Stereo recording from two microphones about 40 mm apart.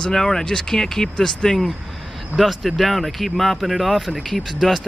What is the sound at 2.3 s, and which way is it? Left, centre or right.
Speech, centre.